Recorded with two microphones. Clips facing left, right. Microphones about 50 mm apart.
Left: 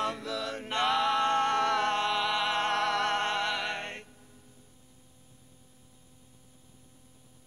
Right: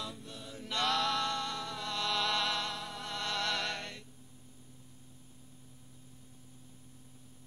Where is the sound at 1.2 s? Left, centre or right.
Left.